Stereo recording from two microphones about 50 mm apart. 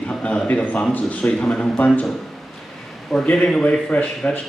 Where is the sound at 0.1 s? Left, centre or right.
Left.